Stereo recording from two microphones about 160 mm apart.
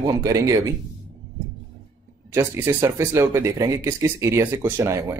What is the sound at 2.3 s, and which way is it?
Speech, 15° right (ahead or behind).